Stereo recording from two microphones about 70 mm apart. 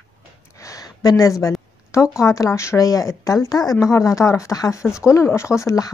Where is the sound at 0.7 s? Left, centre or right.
Left.